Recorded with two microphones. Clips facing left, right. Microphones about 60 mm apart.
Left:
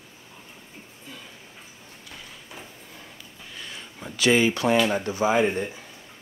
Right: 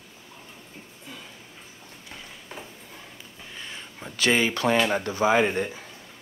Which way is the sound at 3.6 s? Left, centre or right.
Right.